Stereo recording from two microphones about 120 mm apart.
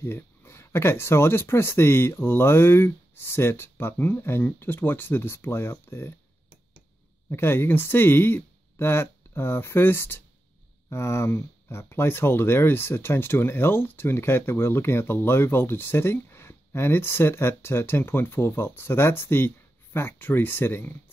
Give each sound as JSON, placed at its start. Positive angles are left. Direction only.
{"t": 0.0, "sound": "speech", "side_deg": 20}
{"t": 7.2, "sound": "speech", "side_deg": 20}